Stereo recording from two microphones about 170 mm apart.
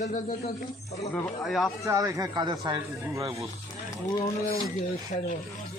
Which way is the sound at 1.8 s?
20° right (ahead or behind).